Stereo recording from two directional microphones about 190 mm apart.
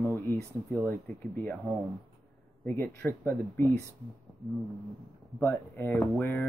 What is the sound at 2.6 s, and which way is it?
Speech, 10° left (ahead or behind).